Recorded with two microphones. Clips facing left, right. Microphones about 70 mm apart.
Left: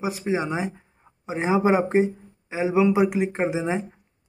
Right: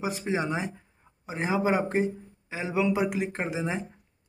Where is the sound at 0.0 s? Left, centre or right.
Centre.